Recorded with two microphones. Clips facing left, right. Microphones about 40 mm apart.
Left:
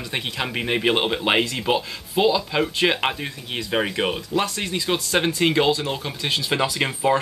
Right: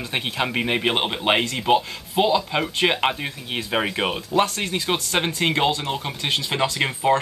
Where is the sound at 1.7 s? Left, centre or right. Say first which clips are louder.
Right 3 dB; centre.